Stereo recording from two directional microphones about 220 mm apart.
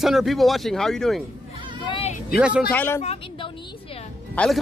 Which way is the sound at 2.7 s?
10° left (ahead or behind).